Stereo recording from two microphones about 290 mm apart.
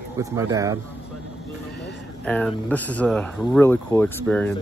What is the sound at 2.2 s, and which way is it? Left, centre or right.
Speech, centre.